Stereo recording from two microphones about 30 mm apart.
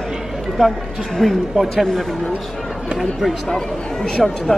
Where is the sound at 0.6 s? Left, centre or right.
Right.